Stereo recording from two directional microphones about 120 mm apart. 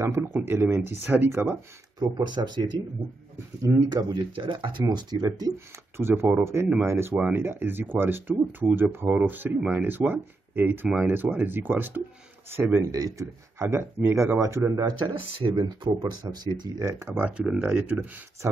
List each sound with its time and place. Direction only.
0.0 s speech: 20° right (ahead or behind)
2.0 s speech: 35° right (ahead or behind)
3.9 s speech: 40° right (ahead or behind)
5.9 s speech: 20° right (ahead or behind)
15.0 s speech: 45° right (ahead or behind)
17.1 s speech: 10° right (ahead or behind)